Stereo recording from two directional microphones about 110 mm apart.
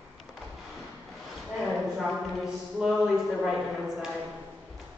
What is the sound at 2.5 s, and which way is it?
Speech, 5° right (ahead or behind).